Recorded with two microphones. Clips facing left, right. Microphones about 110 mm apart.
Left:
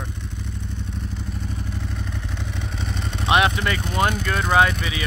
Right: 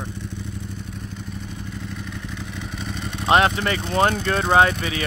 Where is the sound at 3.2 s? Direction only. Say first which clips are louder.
Right 2 dB; 35° right (ahead or behind).